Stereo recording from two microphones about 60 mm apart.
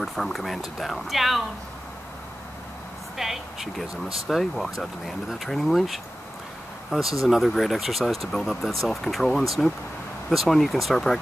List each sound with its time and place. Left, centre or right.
0.0 s speech: centre
3.2 s speech: centre